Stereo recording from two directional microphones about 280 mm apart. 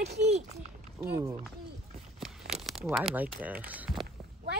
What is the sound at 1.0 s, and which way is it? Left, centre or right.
Speech, centre.